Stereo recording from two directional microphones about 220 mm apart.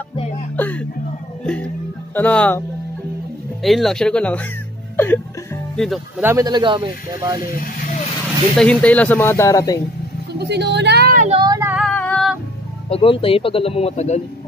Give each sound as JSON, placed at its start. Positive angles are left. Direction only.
{"t": 0.1, "sound": "music", "side_deg": 25}
{"t": 0.6, "sound": "music", "side_deg": 5}
{"t": 2.1, "sound": "speech", "side_deg": 5}
{"t": 3.6, "sound": "speech", "side_deg": 0}
{"t": 6.2, "sound": "speech", "side_deg": -15}
{"t": 8.5, "sound": "speech", "side_deg": 5}
{"t": 10.4, "sound": "speech", "side_deg": -50}
{"t": 11.2, "sound": "child singing", "side_deg": -20}
{"t": 11.7, "sound": "female singing", "side_deg": 5}
{"t": 12.9, "sound": "speech", "side_deg": 25}